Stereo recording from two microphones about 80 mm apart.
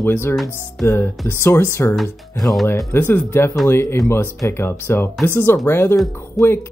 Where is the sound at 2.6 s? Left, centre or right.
Left.